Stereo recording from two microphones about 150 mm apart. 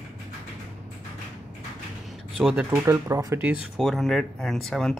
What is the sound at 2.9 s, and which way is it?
Speech, 20° right (ahead or behind).